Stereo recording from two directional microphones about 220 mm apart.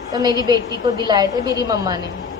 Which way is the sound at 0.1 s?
20° right (ahead or behind).